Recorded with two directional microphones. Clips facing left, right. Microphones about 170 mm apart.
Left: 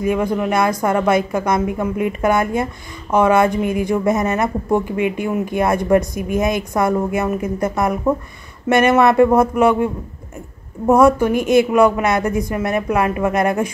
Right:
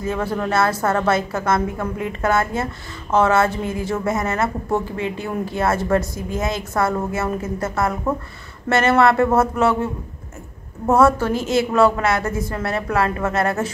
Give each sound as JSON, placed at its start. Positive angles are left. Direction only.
{"t": 0.0, "sound": "a woman's voice", "side_deg": 15}
{"t": 10.9, "sound": "a woman's voice", "side_deg": 15}